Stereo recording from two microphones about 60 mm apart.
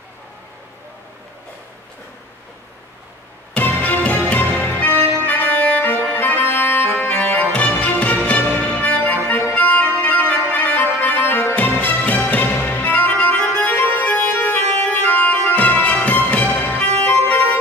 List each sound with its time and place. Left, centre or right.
3.5 s music: left
5.2 s organ: left
6.1 s accordion: left
10.5 s music: left
13.7 s organ: left
15.5 s music: left
16.9 s organ: left